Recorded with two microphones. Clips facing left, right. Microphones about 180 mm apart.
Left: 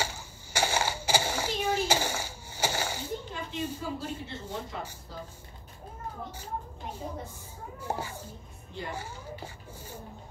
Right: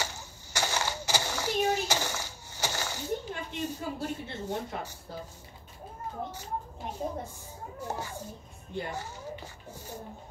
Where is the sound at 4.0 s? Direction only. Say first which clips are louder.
Right 2 dB; 55° right (ahead or behind).